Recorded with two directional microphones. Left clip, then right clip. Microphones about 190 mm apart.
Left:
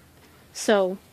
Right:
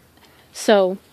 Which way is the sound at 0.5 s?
40° right (ahead or behind).